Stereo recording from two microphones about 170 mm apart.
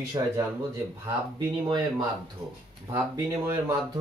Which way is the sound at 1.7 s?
25° right (ahead or behind).